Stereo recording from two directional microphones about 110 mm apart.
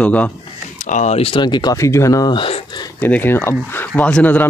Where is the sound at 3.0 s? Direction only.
15° left (ahead or behind).